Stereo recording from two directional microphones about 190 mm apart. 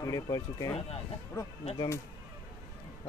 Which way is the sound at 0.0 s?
20° left (ahead or behind).